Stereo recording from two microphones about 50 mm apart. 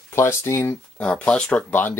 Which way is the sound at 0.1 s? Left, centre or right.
Left.